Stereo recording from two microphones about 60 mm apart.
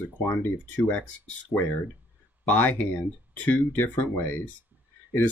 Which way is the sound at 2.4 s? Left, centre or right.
Left.